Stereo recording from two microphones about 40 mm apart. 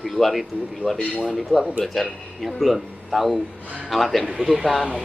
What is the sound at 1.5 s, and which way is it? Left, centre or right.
Speech, centre.